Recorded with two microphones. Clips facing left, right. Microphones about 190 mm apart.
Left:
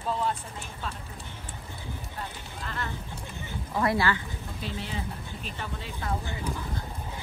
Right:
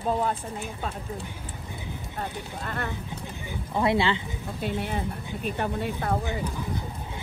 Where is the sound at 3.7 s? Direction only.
20° right (ahead or behind).